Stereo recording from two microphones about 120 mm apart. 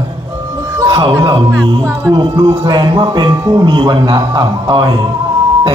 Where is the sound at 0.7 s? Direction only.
40° right (ahead or behind).